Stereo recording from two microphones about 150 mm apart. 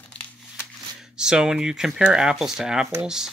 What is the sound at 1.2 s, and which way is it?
Speech, 5° right (ahead or behind).